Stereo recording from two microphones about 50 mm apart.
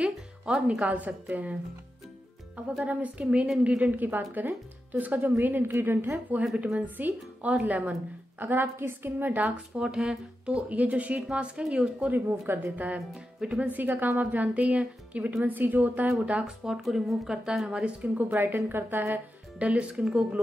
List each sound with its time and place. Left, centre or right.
0.6 s a woman's voice: right
2.8 s a woman's voice: right
6.5 s a woman's voice: centre
6.8 s a woman's voice: right
8.4 s a woman's voice: right
9.5 s speech: centre
10.8 s a woman's voice: right
12.1 s a woman's voice: right
12.7 s a woman's voice: right
16.4 s a woman's voice: centre
18.0 s a woman's voice: right
19.6 s a woman's voice: right